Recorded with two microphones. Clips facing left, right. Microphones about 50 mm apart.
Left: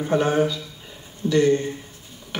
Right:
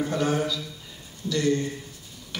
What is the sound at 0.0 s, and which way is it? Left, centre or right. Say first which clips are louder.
Speech: left 5 dB; left.